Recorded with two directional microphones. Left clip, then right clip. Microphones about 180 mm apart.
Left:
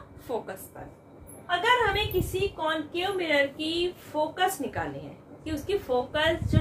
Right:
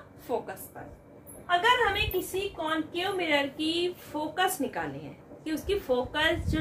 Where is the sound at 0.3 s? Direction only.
10° right (ahead or behind).